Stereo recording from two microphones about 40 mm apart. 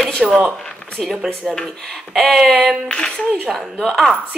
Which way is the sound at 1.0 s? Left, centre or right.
Centre.